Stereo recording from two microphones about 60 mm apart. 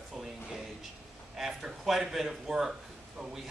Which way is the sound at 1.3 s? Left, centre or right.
Centre.